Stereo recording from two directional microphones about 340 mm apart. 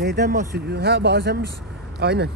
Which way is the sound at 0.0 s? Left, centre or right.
Right.